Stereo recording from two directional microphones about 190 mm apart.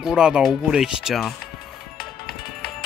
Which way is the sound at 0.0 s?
5° right (ahead or behind).